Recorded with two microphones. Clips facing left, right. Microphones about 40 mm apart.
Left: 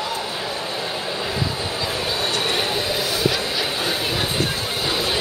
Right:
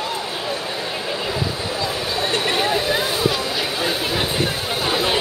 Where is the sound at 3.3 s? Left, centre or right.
Centre.